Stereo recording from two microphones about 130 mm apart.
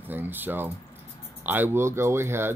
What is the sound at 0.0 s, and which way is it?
Speech, 15° right (ahead or behind).